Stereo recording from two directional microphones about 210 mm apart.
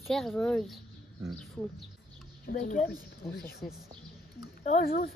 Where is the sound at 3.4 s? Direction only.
10° left (ahead or behind).